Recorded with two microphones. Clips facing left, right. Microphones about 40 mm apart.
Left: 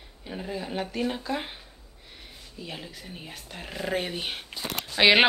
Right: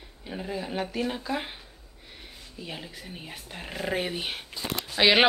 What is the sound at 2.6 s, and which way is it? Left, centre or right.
Speech, centre.